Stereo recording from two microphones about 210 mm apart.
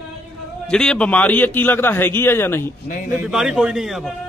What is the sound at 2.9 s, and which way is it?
Speech, 40° left (ahead or behind).